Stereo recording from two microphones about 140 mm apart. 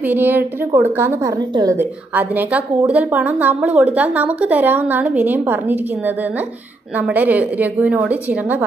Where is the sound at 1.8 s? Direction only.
15° right (ahead or behind).